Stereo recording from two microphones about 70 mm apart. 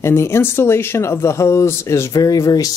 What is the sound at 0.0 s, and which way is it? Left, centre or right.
Speech, left.